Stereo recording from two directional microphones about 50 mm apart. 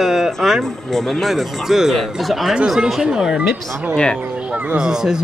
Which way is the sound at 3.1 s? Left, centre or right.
Centre.